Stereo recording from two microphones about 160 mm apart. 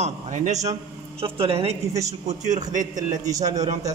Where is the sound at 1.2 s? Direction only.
35° right (ahead or behind).